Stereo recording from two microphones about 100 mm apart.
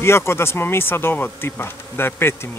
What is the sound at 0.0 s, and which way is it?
Insect, 25° left (ahead or behind).